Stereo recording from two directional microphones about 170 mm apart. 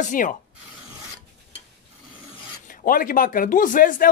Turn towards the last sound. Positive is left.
turn(degrees=55)  # may be behind; listen again after turning